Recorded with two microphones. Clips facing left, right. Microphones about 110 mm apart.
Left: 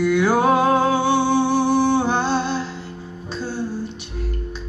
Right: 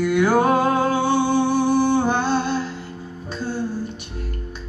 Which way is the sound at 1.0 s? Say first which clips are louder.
Left 1 dB; 45° right (ahead or behind).